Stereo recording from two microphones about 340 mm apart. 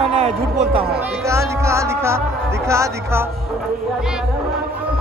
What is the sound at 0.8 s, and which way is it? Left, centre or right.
Speech, centre.